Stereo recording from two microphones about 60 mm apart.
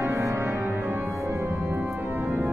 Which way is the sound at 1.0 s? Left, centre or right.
Right.